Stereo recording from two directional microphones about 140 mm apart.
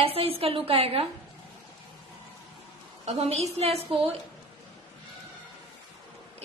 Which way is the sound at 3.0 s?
50° right (ahead or behind).